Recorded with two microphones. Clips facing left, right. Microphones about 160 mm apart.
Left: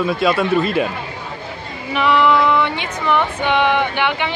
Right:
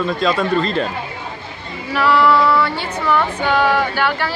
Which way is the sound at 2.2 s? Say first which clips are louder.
Right 1 dB; 15° left (ahead or behind).